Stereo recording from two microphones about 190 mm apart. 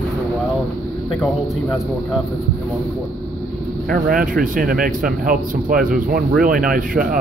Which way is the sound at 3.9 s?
50° right (ahead or behind).